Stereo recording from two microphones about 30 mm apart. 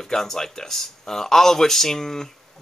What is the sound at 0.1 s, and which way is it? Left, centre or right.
Speech, centre.